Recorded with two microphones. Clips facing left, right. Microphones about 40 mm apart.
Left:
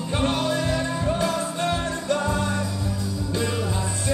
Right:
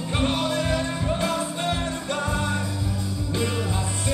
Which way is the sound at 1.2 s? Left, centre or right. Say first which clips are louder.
Left 1 dB; right.